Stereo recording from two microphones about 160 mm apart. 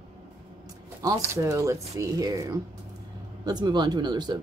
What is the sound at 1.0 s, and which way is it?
Speech, 20° right (ahead or behind).